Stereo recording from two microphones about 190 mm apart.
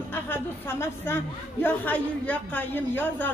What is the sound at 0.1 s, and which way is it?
A woman's voice, 10° left (ahead or behind).